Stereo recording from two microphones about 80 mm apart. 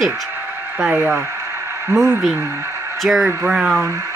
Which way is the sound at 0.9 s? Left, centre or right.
Right.